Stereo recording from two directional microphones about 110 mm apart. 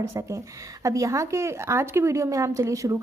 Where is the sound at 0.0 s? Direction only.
25° right (ahead or behind).